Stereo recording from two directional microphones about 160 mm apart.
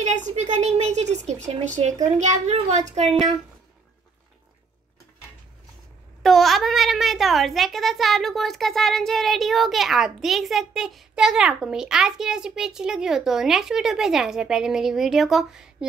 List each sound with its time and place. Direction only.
0.0 s a sound: 50° right (ahead or behind)
2.1 s a child's voice: 45° right (ahead or behind)
6.2 s a child's voice: centre (ahead or behind)